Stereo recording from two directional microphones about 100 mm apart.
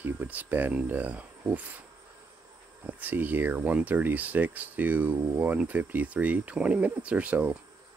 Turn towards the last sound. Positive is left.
turn(degrees=-15)  # may be behind; listen again after turning